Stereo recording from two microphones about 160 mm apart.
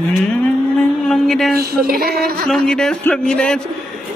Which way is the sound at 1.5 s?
70° right (ahead or behind).